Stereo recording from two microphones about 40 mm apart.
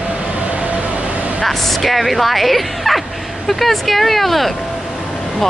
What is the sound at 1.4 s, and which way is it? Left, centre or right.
Speech, centre.